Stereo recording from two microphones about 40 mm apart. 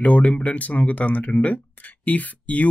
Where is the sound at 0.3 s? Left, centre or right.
Left.